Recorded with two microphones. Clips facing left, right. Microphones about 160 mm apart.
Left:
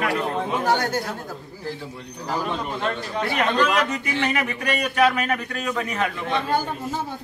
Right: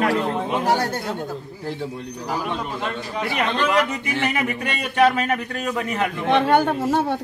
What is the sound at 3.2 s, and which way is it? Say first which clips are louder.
A man's voice: left 1 dB; 20° right (ahead or behind).